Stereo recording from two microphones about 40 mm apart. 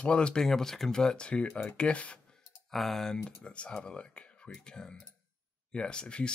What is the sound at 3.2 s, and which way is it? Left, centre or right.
Speech, left.